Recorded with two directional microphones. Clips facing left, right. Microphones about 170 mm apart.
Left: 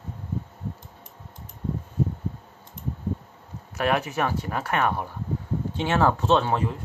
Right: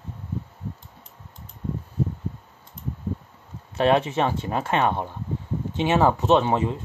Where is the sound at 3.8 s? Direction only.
25° right (ahead or behind).